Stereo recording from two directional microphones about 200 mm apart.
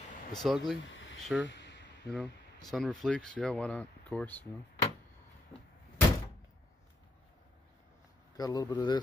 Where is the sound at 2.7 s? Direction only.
5° left (ahead or behind).